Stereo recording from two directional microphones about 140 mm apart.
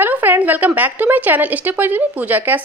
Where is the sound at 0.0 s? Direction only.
15° right (ahead or behind).